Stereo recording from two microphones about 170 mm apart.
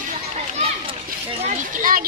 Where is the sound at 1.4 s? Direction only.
50° right (ahead or behind).